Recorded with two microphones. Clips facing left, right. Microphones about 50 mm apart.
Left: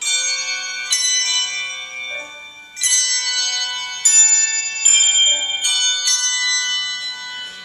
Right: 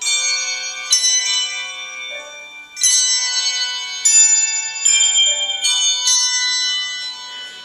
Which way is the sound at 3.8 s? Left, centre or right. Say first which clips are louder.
Even; centre.